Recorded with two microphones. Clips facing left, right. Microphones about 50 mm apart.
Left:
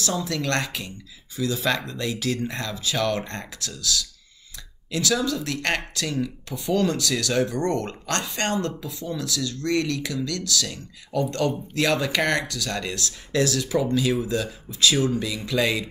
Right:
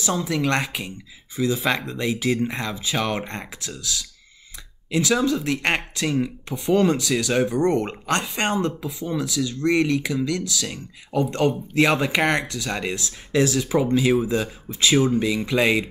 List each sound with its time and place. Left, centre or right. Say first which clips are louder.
0.0 s speech: right 3 dB; centre